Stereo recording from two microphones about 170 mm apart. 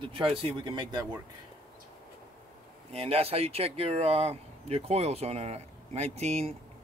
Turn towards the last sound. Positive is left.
turn(degrees=-40)  # may be behind; listen again after turning